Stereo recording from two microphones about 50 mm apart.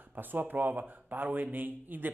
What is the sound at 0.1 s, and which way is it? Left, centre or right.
Speech, right.